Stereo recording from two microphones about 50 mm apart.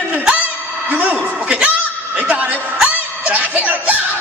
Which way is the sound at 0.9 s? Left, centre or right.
Right.